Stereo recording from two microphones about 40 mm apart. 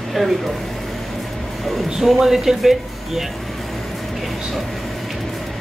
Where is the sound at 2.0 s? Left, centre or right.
Centre.